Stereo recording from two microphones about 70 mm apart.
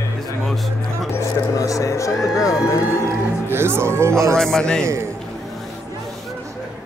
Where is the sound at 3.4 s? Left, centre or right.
Right.